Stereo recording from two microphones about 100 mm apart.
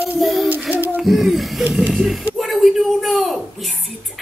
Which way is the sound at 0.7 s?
20° right (ahead or behind).